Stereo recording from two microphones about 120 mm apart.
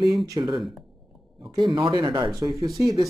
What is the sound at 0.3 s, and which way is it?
Speech, 35° right (ahead or behind).